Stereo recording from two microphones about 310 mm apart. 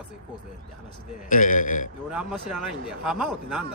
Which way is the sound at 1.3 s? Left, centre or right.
Left.